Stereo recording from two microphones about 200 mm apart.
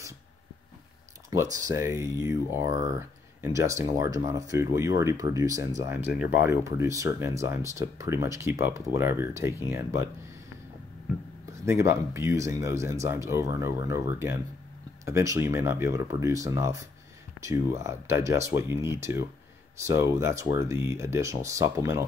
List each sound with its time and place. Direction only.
1.3 s speech: 15° right (ahead or behind)
11.5 s speech: 15° right (ahead or behind)